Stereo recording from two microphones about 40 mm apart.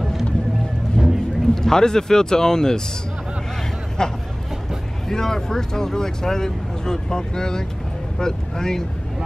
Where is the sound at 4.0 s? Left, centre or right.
Centre.